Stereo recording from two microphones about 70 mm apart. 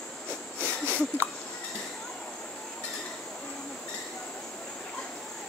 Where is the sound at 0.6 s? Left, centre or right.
Left.